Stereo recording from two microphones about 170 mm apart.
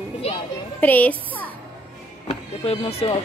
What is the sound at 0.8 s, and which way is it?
Speech, 10° left (ahead or behind).